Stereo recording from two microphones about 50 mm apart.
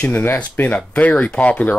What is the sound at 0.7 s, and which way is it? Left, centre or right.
Speech, left.